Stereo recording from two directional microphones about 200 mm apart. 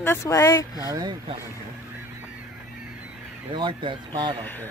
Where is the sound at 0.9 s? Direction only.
20° right (ahead or behind).